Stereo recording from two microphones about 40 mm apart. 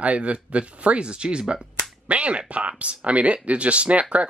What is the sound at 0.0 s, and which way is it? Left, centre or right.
Speech, right.